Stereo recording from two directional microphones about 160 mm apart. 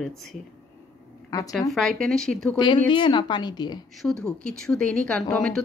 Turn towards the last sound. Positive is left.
turn(degrees=5)  # may be behind; listen again after turning